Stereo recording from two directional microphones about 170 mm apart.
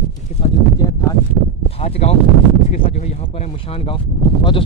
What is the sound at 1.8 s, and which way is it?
Speech, 35° left (ahead or behind).